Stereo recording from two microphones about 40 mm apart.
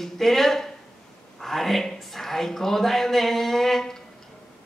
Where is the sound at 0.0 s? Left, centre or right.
Centre.